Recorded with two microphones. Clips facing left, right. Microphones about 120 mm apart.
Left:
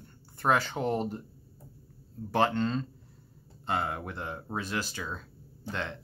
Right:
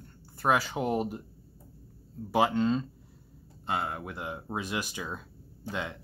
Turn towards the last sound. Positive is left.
turn(degrees=-10)  # may be behind; listen again after turning